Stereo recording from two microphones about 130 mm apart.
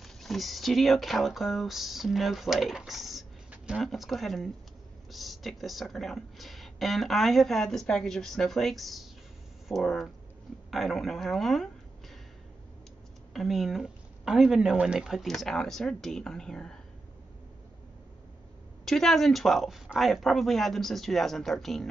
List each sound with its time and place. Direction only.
0.0 s speech: centre (ahead or behind)
13.3 s speech: centre (ahead or behind)
18.9 s speech: centre (ahead or behind)